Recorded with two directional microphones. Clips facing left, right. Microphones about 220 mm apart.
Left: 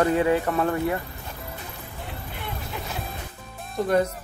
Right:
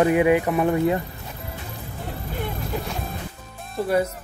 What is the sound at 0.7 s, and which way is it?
Speech, 20° right (ahead or behind).